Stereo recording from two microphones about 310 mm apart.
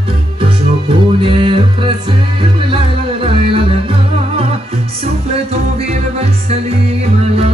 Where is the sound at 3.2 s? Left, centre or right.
Centre.